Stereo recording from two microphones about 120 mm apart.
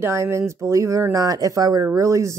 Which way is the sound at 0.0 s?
25° right (ahead or behind).